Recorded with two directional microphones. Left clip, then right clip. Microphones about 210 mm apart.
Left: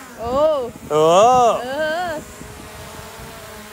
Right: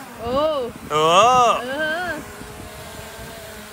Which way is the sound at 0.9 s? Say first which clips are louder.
Left 2 dB; 25° left (ahead or behind).